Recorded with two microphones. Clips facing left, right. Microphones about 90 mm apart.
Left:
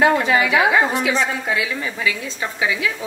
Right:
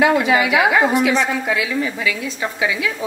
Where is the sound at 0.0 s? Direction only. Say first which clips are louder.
Right 1 dB; 35° left (ahead or behind).